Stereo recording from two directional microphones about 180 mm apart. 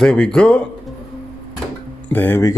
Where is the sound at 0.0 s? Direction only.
5° left (ahead or behind).